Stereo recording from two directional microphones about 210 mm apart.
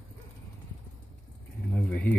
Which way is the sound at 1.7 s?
5° left (ahead or behind).